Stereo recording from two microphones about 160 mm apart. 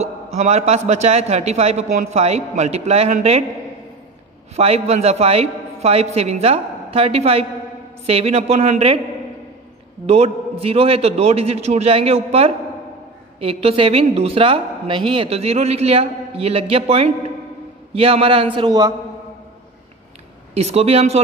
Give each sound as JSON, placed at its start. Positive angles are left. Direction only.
{"t": 0.0, "sound": "a man's voice", "side_deg": -45}
{"t": 4.6, "sound": "a woman's voice", "side_deg": -40}
{"t": 10.0, "sound": "a woman's voice", "side_deg": -40}
{"t": 20.5, "sound": "a woman's voice", "side_deg": -40}